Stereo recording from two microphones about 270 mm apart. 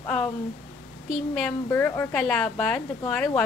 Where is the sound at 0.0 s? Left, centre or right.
Centre.